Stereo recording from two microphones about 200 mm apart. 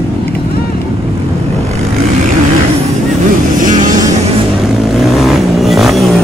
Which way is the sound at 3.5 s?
40° right (ahead or behind).